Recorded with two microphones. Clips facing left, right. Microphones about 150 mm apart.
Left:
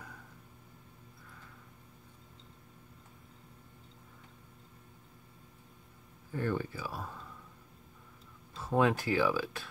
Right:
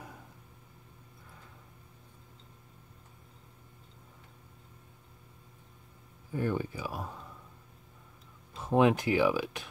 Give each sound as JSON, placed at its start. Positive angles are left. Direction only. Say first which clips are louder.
{"t": 6.3, "sound": "speech", "louder": "right 2 dB", "side_deg": -15}
{"t": 8.5, "sound": "speech", "louder": "right 4 dB", "side_deg": -20}